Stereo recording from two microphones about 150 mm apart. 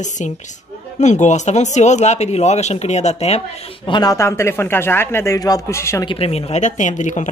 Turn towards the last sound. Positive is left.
turn(degrees=55)  # may be behind; listen again after turning